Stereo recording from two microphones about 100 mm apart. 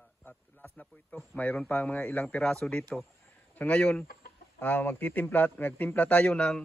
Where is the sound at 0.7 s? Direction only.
15° left (ahead or behind).